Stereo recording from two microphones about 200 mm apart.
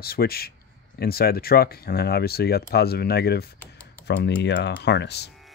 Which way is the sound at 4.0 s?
5° left (ahead or behind).